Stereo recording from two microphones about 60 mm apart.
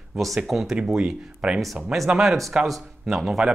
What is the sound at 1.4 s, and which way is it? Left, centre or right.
Speech, centre.